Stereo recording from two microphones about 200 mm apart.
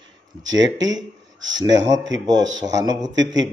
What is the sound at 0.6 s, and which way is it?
A man's voice, 65° right (ahead or behind).